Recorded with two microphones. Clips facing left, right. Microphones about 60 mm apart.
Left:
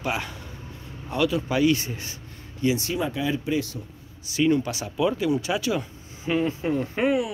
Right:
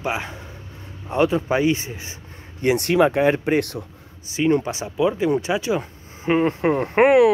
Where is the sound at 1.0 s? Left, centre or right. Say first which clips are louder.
Right 5 dB; right.